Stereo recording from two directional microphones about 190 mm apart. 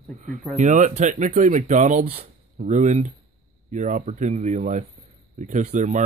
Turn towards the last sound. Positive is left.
turn(degrees=-40)  # may be behind; listen again after turning